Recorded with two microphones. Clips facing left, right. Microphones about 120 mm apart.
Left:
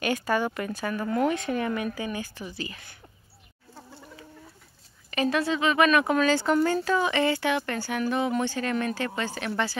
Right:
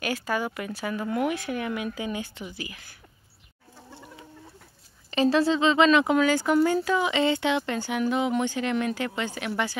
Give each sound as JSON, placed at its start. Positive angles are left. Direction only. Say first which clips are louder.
{"t": 0.0, "sound": "speech", "louder": "left 2 dB", "side_deg": -5}
{"t": 5.1, "sound": "speech", "louder": "right 4 dB", "side_deg": -30}